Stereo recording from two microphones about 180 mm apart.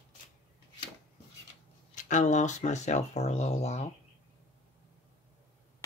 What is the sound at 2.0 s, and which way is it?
Speech, 45° left (ahead or behind).